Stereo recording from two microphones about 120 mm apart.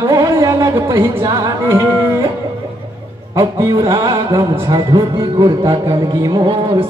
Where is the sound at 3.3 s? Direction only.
25° right (ahead or behind).